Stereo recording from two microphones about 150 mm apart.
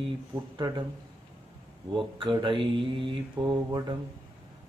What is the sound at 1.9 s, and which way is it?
Speech, 35° right (ahead or behind).